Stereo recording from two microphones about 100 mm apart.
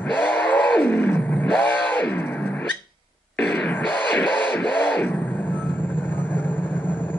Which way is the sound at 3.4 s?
10° left (ahead or behind).